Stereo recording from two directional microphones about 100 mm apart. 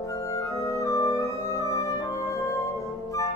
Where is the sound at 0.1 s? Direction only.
30° left (ahead or behind).